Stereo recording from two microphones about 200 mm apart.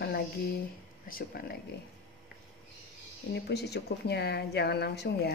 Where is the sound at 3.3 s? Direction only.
55° left (ahead or behind).